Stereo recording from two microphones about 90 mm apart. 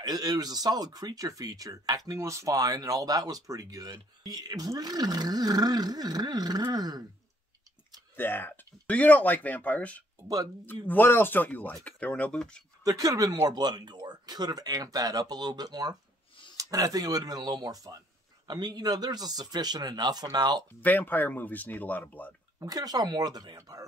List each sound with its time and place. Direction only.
0.0 s speech: 45° right (ahead or behind)
8.2 s speech: 20° left (ahead or behind)
10.2 s speech: 45° right (ahead or behind)
10.6 s speech: 20° left (ahead or behind)
12.8 s speech: 40° right (ahead or behind)
20.8 s speech: 20° left (ahead or behind)
22.6 s speech: 45° right (ahead or behind)